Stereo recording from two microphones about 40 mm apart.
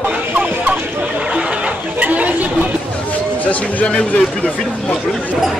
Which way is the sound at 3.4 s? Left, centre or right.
Left.